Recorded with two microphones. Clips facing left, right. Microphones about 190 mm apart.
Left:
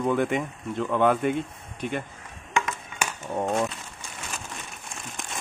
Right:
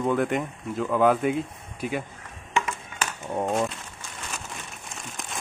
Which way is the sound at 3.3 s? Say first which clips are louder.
Even; 5° right (ahead or behind).